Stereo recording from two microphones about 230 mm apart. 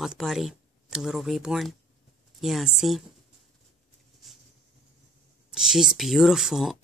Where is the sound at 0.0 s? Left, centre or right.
Centre.